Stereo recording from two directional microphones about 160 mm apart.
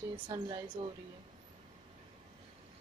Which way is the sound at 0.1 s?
30° right (ahead or behind).